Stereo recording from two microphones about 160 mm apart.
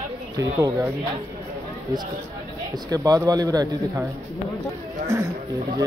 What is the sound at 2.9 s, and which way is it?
Speech, 20° right (ahead or behind).